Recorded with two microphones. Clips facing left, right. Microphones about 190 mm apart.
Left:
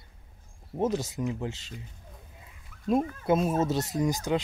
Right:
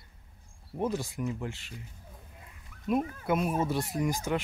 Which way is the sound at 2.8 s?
25° left (ahead or behind).